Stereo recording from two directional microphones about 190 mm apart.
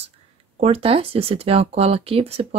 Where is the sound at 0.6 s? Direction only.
30° right (ahead or behind).